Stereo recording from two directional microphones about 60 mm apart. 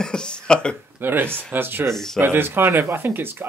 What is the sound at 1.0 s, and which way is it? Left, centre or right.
Speech, right.